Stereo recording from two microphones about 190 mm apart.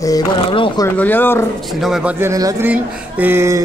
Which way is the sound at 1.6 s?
Centre (ahead or behind).